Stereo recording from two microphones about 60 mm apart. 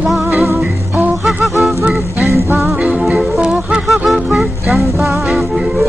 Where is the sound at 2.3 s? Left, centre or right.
Right.